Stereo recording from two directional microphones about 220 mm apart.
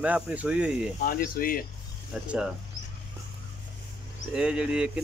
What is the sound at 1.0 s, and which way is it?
Speech, 40° left (ahead or behind).